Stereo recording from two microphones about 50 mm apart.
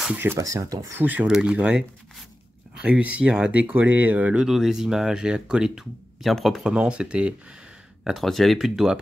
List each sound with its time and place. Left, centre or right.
0.4 s speech: right
0.9 s speech: right
1.2 s speech: centre
4.4 s speech: centre
6.2 s speech: centre
6.6 s speech: centre
8.0 s speech: centre